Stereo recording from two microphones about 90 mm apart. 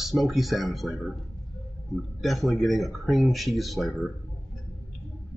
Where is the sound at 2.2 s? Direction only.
Centre (ahead or behind).